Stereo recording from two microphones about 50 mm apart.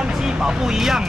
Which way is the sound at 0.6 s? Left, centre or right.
Centre.